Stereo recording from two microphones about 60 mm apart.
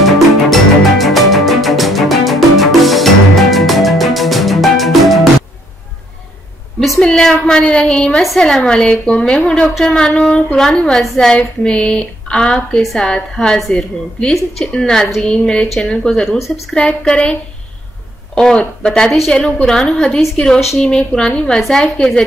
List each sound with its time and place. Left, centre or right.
0.0 s music: centre
7.0 s a woman's voice: centre
10.5 s a woman's voice: centre